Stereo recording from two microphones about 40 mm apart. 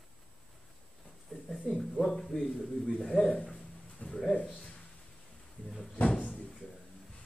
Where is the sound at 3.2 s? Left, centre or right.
Left.